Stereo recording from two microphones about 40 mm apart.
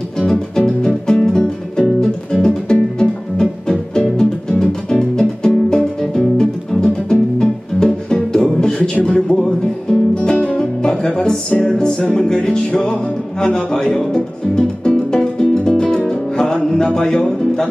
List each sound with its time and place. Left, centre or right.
0.2 s music: centre; by 10.7 s left
10.8 s music: centre
13.9 s speech: centre
14.9 s music: centre